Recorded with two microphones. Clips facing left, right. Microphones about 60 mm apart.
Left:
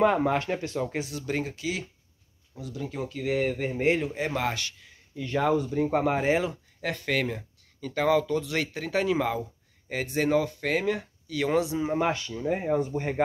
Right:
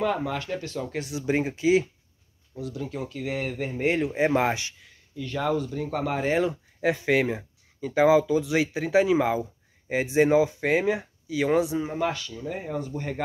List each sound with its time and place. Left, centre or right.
0.0 s speech: left
1.2 s speech: right
2.5 s speech: centre
4.1 s speech: right
5.1 s speech: centre
6.4 s speech: centre
11.9 s speech: left